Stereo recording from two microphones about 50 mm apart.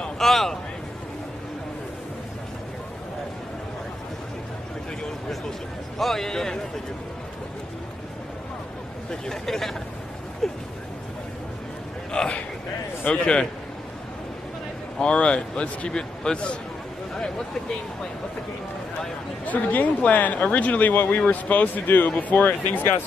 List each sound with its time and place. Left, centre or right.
0.2 s speech: centre
5.9 s speech: centre
9.1 s speech: centre
12.1 s a man's voice: centre
15.0 s a man's voice: left
19.4 s speech: left